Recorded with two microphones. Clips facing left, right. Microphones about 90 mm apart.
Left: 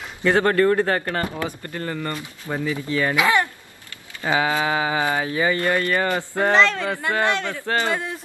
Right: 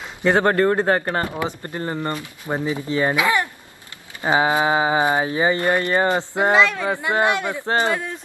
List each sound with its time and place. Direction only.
0.2 s speech: 25° right (ahead or behind)
6.5 s speech: 10° right (ahead or behind)